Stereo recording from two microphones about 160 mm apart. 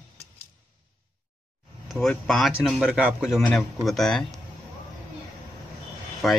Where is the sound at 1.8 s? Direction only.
Centre (ahead or behind).